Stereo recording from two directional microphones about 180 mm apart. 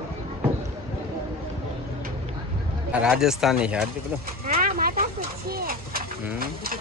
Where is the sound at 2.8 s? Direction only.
5° right (ahead or behind).